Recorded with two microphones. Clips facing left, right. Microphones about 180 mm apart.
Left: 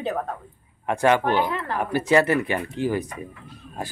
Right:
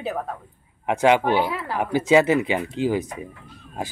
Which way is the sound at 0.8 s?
15° right (ahead or behind).